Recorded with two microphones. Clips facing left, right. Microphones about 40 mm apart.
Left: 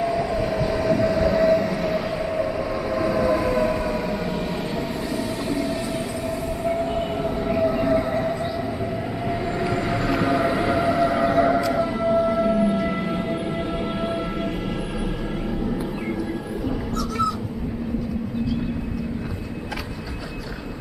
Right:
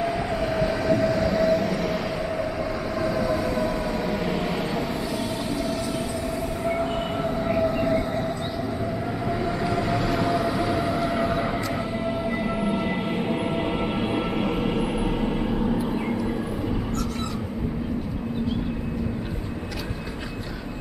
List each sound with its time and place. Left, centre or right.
0.0 s train: centre
6.6 s train: centre
9.6 s train: centre
11.1 s siren: left
12.5 s train: right